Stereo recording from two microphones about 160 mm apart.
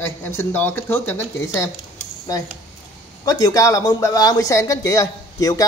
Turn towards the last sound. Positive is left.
turn(degrees=20)  # may be behind; listen again after turning